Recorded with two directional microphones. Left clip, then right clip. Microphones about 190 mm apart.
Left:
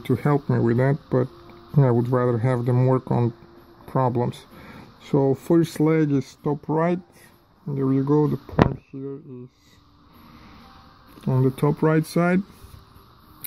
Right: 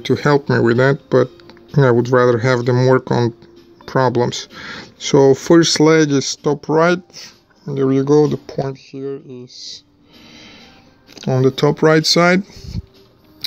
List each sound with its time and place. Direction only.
0.0 s speech: 5° right (ahead or behind)
11.2 s speech: 10° right (ahead or behind)